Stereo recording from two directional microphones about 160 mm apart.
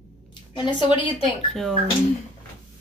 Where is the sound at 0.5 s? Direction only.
30° left (ahead or behind).